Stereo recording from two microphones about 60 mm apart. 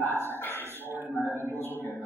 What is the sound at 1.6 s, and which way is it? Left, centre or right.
Speech, left.